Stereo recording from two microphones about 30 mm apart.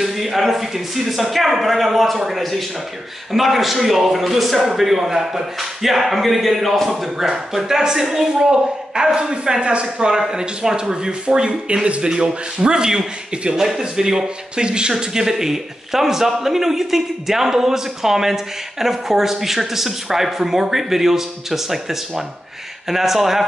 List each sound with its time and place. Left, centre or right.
0.0 s a man's voice: centre
8.4 s speech: right
10.3 s a man's voice: right
14.6 s speech: right
14.9 s a man's voice: centre